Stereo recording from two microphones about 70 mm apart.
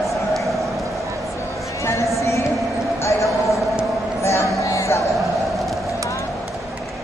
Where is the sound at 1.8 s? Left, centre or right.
Left.